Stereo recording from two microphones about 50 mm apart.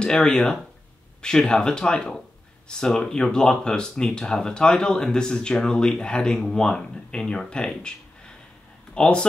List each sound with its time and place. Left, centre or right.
0.0 s speech: centre
8.9 s speech: centre